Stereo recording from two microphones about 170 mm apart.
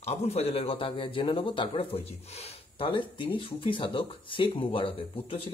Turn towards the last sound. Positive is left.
turn(degrees=35)  # may be behind; listen again after turning